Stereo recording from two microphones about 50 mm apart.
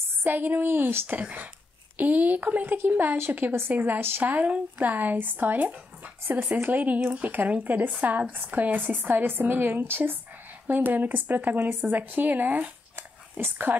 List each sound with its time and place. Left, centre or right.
0.2 s speech: right